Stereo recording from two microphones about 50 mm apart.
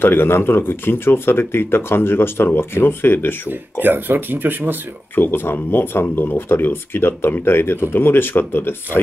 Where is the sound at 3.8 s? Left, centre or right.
Right.